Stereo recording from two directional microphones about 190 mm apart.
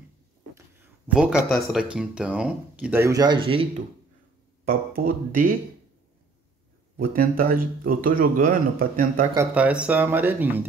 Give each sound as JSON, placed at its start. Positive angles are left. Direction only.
{"t": 1.0, "sound": "speech", "side_deg": -5}
{"t": 4.6, "sound": "speech", "side_deg": -50}
{"t": 7.0, "sound": "speech", "side_deg": -50}
{"t": 9.3, "sound": "speech", "side_deg": -10}